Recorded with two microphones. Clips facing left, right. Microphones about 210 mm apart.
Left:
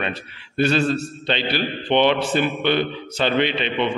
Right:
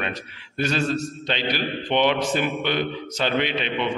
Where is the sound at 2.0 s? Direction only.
5° right (ahead or behind).